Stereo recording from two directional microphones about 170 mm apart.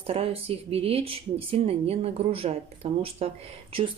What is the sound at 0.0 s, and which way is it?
Speech, 35° right (ahead or behind).